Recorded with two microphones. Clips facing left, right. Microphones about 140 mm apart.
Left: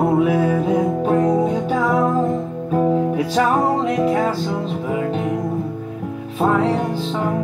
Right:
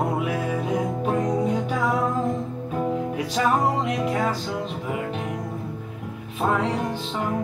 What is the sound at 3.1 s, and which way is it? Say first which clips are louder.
Music: left 5 dB; 35° left (ahead or behind).